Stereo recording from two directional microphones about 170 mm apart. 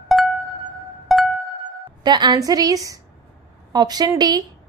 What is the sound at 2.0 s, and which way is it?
A woman's voice, 25° right (ahead or behind).